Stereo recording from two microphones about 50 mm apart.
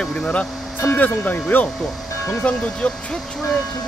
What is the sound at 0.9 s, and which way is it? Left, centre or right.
Speech, left.